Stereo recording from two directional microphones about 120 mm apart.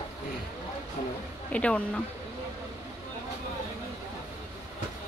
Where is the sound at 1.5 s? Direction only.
10° left (ahead or behind).